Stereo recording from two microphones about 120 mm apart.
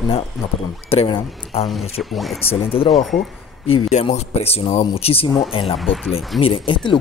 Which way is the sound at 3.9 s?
70° left (ahead or behind).